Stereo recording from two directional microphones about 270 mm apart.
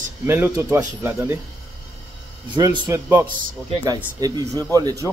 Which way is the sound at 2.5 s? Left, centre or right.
Centre.